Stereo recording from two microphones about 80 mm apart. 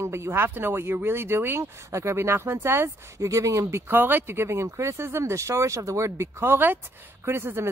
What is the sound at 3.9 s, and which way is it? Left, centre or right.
Speech, right.